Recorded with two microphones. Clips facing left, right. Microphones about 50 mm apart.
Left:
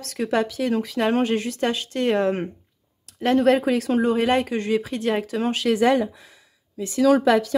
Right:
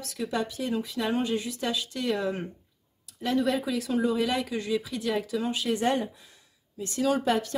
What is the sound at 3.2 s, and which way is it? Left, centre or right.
Speech, left.